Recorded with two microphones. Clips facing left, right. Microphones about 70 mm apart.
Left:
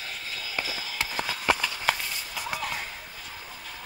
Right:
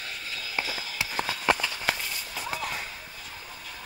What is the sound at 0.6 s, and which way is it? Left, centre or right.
Run, right.